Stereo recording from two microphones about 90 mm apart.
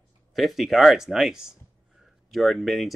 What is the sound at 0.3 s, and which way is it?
Speech, centre (ahead or behind).